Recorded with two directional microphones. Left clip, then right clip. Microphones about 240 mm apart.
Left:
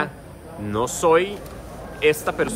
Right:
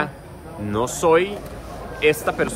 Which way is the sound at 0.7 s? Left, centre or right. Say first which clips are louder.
Right 1 dB; centre.